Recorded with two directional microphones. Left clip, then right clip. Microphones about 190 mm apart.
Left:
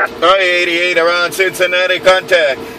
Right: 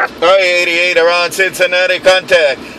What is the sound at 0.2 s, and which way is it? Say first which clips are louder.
Speech: right 2 dB; 25° right (ahead or behind).